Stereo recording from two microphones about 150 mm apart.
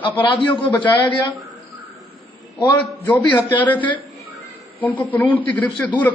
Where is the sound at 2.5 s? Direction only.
10° left (ahead or behind).